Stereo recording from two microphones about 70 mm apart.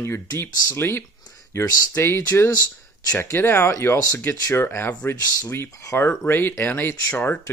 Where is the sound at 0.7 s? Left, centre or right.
Left.